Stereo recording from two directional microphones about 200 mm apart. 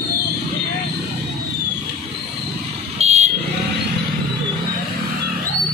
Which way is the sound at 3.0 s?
30° right (ahead or behind).